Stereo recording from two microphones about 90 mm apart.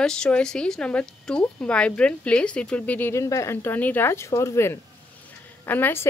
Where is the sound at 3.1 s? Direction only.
35° left (ahead or behind).